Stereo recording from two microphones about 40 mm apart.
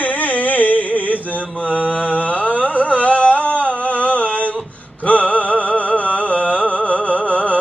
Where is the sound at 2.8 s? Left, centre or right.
Left.